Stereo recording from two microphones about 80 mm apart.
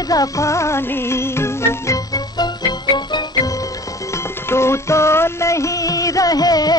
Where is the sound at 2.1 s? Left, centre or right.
Left.